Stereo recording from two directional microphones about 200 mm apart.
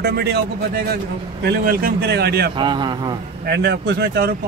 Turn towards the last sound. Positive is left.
turn(degrees=-55)  # may be behind; listen again after turning